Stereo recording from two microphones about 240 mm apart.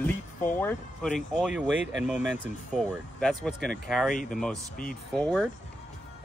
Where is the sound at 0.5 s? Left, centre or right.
Centre.